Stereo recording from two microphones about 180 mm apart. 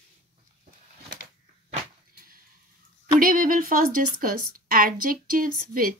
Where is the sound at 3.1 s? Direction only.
50° right (ahead or behind).